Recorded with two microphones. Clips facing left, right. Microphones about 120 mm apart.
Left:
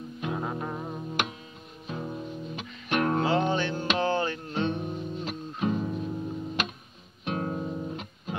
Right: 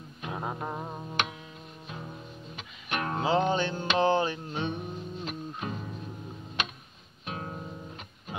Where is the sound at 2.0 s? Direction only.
15° left (ahead or behind).